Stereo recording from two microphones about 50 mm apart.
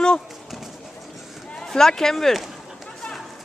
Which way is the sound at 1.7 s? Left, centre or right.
Centre.